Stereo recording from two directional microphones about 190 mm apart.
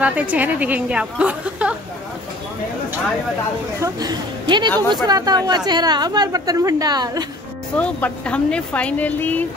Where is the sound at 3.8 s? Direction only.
20° right (ahead or behind).